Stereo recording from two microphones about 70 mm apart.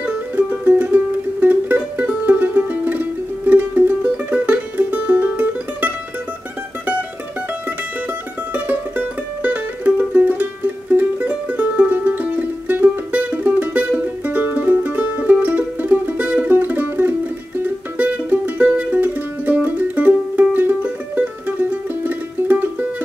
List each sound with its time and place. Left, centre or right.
0.0 s music: right
8.5 s music: right
16.2 s music: centre
16.4 s music: right
22.0 s music: right